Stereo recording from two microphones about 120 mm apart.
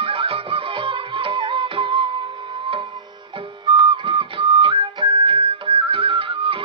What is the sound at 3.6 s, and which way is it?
Music, 45° right (ahead or behind).